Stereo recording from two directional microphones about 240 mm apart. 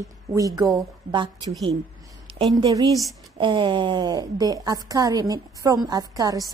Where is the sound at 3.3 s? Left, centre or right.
Centre.